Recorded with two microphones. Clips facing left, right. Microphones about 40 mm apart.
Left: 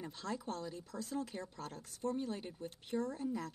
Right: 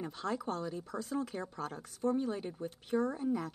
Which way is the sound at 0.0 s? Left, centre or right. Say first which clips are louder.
Right 6 dB; right.